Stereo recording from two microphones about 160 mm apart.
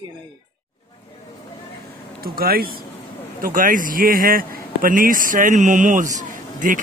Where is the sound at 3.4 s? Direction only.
60° right (ahead or behind).